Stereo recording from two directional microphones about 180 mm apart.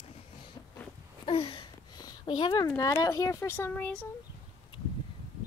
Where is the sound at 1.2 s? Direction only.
30° left (ahead or behind); by 4.0 s 10° left (ahead or behind).